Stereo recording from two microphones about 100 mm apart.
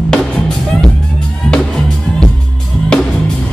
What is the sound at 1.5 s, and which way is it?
Music, 10° left (ahead or behind).